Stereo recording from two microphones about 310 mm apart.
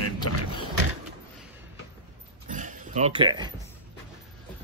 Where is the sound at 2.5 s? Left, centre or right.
Right.